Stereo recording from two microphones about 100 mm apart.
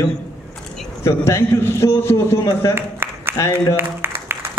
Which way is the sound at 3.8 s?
25° right (ahead or behind).